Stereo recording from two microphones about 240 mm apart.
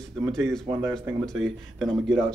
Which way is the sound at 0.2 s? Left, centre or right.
Centre.